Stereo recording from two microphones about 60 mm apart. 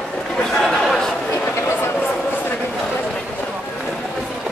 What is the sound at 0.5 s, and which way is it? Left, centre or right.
Chatter, centre.